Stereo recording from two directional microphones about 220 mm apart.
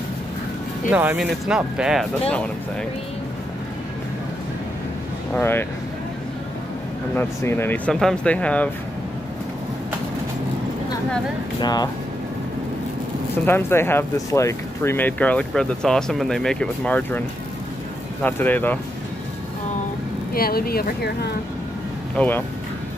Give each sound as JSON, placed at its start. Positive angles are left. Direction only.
{"t": 0.8, "sound": "speech", "side_deg": -5}
{"t": 5.3, "sound": "speech", "side_deg": 10}
{"t": 7.2, "sound": "speech", "side_deg": 10}
{"t": 11.6, "sound": "speech", "side_deg": 20}
{"t": 13.5, "sound": "speech", "side_deg": 10}
{"t": 18.2, "sound": "speech", "side_deg": 10}
{"t": 20.3, "sound": "speech", "side_deg": 45}
{"t": 22.1, "sound": "speech", "side_deg": 5}